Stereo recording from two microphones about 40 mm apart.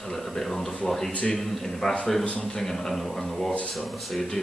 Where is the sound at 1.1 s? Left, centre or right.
Left.